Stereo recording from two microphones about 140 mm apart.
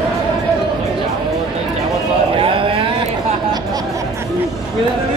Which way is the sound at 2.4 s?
40° right (ahead or behind).